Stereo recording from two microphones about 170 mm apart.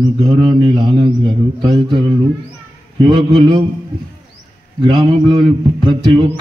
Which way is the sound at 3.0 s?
25° right (ahead or behind).